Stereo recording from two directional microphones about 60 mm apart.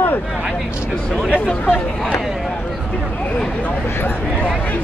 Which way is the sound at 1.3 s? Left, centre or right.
Left.